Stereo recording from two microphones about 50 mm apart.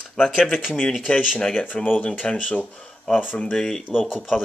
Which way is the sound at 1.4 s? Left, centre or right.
Centre.